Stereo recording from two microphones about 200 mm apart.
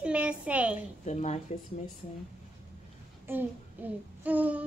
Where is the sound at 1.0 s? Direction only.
35° left (ahead or behind).